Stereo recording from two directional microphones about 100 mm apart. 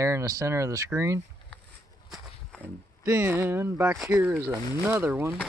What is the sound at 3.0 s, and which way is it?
Speech, 25° right (ahead or behind).